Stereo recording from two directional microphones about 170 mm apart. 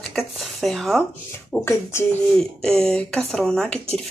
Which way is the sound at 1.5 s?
15° left (ahead or behind).